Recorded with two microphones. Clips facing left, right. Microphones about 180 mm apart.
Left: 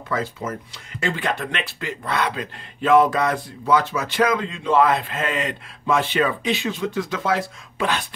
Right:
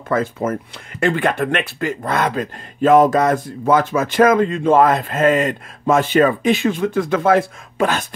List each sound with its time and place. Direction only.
0.1 s speech: 50° right (ahead or behind)